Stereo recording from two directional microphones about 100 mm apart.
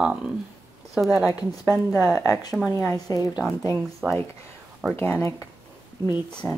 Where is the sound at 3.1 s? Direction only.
35° left (ahead or behind).